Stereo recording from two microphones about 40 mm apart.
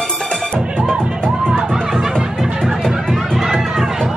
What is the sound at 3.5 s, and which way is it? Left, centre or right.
Run, centre.